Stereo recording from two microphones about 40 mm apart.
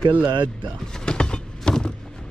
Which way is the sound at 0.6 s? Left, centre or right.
Left.